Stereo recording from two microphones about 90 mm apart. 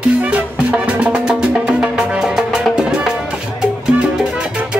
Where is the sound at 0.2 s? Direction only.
15° right (ahead or behind).